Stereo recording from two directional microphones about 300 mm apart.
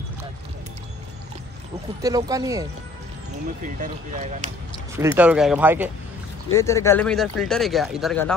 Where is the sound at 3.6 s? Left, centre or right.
Right.